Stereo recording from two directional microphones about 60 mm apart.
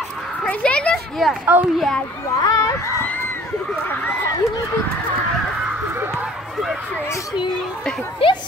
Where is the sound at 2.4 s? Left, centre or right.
Left.